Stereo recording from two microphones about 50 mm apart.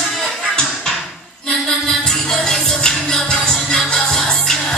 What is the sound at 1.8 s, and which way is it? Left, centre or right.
Music, centre.